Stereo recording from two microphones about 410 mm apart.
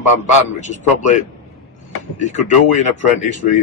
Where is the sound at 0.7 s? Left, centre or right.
Centre.